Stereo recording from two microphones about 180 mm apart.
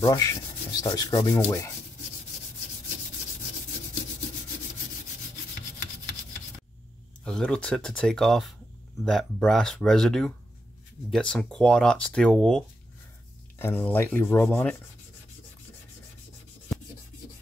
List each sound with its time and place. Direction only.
0.0 s rub: 20° left (ahead or behind)
7.2 s speech: 5° left (ahead or behind)